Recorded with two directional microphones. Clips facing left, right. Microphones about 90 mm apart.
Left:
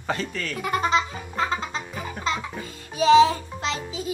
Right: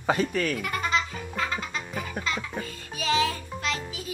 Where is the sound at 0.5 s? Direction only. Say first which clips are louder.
Left 5 dB; 20° left (ahead or behind).